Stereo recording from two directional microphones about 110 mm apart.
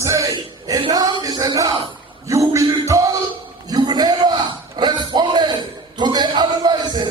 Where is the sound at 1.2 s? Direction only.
35° right (ahead or behind).